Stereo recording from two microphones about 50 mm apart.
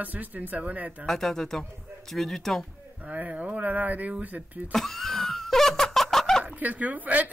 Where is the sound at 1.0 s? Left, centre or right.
Centre.